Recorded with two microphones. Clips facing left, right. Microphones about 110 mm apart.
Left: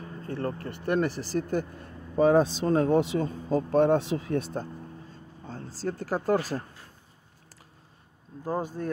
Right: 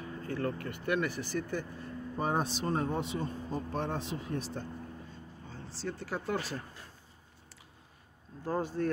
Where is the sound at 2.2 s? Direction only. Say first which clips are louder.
Left 11 dB; 90° left.